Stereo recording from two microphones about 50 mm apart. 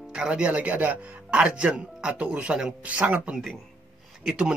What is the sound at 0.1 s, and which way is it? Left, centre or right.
Speech, centre.